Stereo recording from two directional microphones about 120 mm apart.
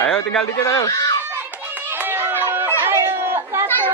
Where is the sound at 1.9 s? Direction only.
15° right (ahead or behind).